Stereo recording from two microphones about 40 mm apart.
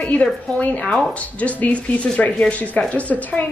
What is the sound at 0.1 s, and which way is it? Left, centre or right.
Speech, left.